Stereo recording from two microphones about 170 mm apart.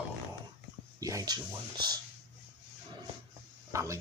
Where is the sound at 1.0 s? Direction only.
20° right (ahead or behind).